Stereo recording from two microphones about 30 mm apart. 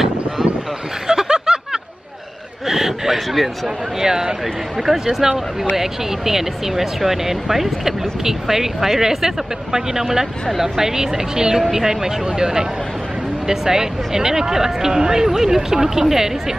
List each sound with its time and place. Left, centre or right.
1.0 s snicker: right
2.7 s a sound: centre
4.0 s a woman's voice: centre